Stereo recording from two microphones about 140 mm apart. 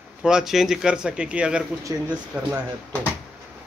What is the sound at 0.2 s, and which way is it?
Speech, 5° right (ahead or behind).